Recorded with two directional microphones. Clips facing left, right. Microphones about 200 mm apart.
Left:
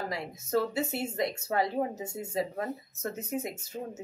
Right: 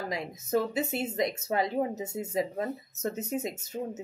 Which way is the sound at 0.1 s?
20° right (ahead or behind).